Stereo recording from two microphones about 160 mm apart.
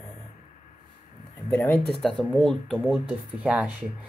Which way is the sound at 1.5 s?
10° left (ahead or behind).